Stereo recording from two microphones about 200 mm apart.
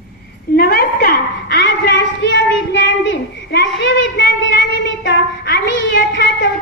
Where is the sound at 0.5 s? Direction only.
50° left (ahead or behind).